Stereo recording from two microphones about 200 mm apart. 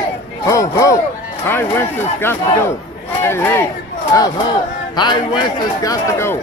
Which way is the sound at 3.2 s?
10° left (ahead or behind).